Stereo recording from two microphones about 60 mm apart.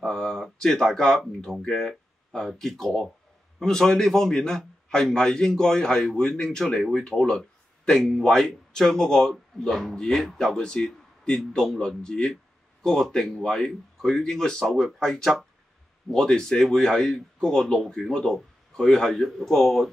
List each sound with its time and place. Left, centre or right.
0.0 s a man's voice: centre